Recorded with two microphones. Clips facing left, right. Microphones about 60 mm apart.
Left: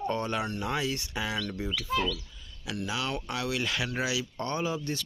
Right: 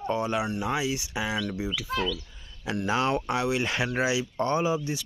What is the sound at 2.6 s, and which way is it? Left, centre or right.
Speech, right.